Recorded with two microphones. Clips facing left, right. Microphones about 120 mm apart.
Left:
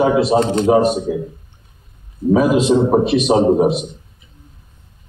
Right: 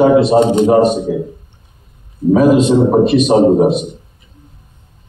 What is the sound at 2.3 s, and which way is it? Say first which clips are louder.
A man's voice: right 4 dB; 5° left (ahead or behind).